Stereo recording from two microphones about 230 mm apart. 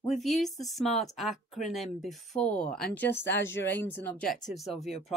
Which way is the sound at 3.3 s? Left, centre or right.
Left.